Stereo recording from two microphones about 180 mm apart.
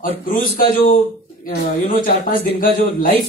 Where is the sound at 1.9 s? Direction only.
50° left (ahead or behind).